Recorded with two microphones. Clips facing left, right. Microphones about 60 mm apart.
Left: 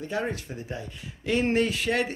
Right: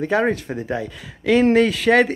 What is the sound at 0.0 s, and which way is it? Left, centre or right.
Speech, right.